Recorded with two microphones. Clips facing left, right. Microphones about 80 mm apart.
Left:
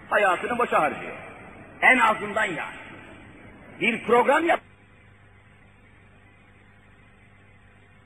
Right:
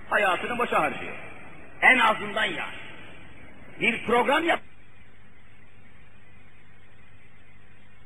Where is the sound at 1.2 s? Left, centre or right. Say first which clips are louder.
Left 3 dB; centre.